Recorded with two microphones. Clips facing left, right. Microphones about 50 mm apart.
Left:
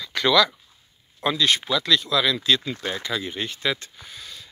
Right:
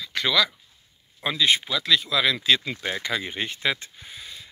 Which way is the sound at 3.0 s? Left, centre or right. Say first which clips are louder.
Even; right.